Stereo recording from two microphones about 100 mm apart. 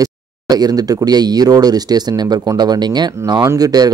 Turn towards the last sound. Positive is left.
turn(degrees=-40)  # may be behind; listen again after turning